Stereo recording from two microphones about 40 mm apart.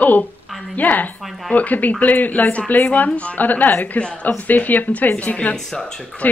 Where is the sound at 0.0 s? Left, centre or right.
Left.